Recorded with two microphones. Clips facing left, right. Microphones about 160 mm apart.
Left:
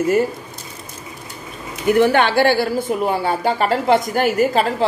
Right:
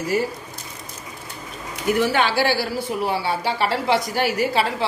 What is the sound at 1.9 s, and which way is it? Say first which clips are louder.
Speech: left 5 dB; 55° left (ahead or behind).